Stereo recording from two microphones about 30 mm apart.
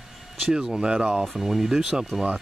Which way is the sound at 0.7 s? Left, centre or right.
Right.